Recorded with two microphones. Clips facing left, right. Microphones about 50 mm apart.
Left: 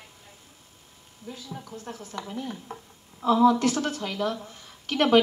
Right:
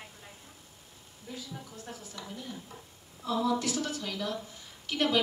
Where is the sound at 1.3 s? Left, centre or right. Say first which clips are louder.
Left 3 dB; left.